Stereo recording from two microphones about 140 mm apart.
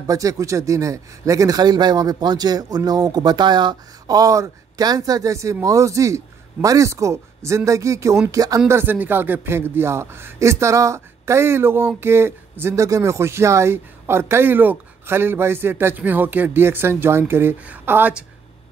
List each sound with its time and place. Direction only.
0.0 s speech: 25° right (ahead or behind)